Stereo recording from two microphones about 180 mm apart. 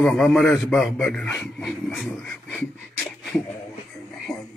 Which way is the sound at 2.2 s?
10° left (ahead or behind).